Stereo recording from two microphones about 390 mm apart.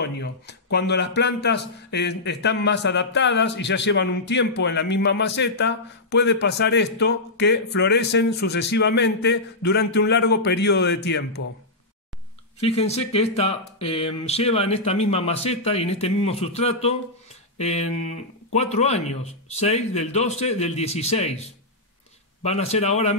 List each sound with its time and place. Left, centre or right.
0.0 s speech: left
12.5 s speech: centre